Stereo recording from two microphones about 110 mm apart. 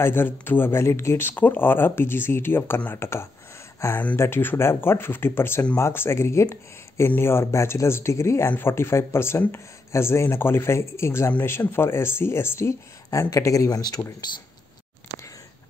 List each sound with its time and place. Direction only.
0.0 s speech: 20° left (ahead or behind); by 14.1 s 35° left (ahead or behind)